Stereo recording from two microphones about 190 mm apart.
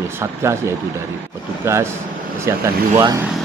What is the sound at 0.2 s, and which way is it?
Speech, 15° right (ahead or behind).